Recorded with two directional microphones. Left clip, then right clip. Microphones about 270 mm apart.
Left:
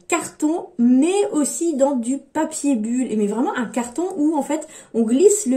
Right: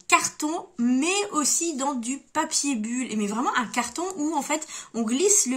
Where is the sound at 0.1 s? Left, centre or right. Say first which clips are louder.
Left 1 dB; right.